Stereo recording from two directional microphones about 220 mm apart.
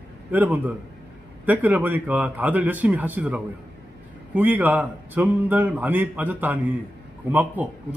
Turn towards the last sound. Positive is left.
turn(degrees=-5)  # may be behind; listen again after turning